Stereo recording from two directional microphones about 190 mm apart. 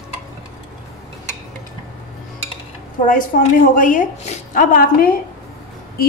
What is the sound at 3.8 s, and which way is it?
A woman's voice, 45° left (ahead or behind).